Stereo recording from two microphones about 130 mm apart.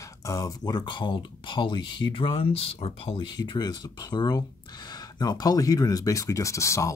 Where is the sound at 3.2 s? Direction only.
35° left (ahead or behind).